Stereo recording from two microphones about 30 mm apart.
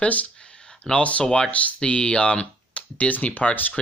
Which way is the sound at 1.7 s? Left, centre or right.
Left.